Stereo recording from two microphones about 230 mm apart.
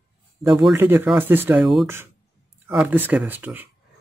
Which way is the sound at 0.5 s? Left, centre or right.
Centre.